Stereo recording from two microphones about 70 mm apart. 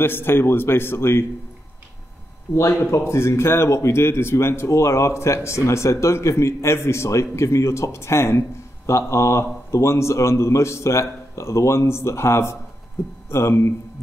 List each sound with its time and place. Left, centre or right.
0.0 s speech: left
2.7 s speech: left